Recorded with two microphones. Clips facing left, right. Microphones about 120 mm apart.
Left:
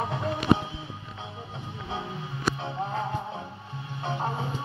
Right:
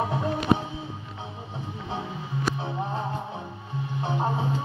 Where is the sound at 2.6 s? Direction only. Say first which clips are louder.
Right 1 dB; 5° right (ahead or behind).